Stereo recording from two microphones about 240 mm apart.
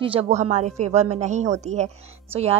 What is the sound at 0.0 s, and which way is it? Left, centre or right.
A woman's voice, right.